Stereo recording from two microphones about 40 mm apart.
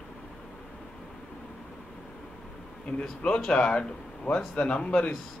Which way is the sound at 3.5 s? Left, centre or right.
Left.